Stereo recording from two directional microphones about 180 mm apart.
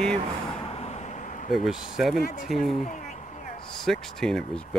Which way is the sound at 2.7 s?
40° left (ahead or behind).